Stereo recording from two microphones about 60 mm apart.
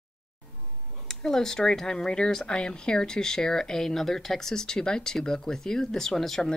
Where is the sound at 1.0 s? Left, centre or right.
Centre.